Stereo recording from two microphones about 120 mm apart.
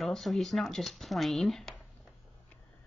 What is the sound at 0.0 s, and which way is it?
A woman's voice, centre (ahead or behind).